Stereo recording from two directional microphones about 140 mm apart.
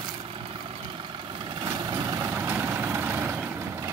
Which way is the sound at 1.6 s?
25° right (ahead or behind).